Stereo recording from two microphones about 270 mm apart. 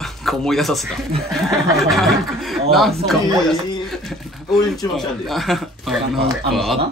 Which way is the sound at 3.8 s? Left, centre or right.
Centre.